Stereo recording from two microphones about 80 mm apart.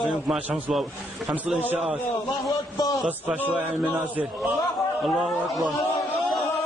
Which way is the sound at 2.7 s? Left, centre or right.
Left.